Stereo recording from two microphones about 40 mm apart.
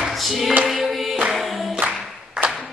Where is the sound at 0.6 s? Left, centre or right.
Centre.